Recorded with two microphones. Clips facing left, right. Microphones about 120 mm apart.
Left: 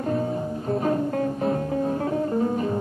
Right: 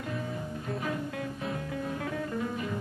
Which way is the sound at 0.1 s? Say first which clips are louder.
Left 11 dB; 40° left (ahead or behind).